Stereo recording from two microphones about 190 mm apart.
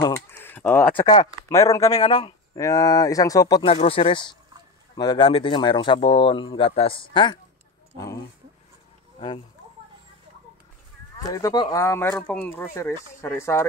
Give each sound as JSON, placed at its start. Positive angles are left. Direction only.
{"t": 0.0, "sound": "a sound", "side_deg": 15}
{"t": 0.9, "sound": "speech", "side_deg": 20}
{"t": 3.7, "sound": "speech", "side_deg": 30}
{"t": 11.2, "sound": "speech", "side_deg": 20}